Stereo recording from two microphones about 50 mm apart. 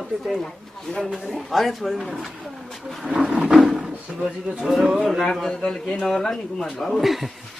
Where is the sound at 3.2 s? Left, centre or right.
Centre.